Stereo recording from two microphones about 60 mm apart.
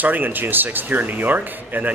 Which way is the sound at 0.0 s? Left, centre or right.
Right.